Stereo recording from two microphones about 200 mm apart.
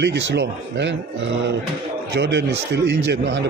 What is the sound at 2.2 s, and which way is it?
Speech, 60° right (ahead or behind).